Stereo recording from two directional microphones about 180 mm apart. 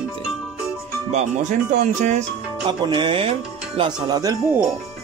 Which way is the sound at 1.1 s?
40° right (ahead or behind).